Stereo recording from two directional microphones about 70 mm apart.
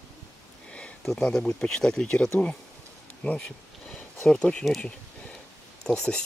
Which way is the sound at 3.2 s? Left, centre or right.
Centre.